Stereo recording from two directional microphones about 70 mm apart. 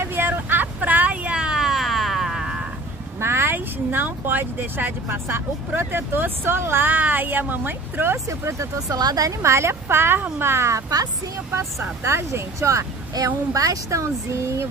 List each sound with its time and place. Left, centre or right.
0.0 s vehicle: right; by 2.6 s centre
3.2 s speech: right
8.3 s speech: right
9.4 s a woman's voice: right
13.1 s speech: right